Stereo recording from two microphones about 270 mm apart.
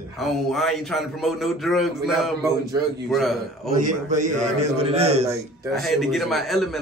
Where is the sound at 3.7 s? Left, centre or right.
Right.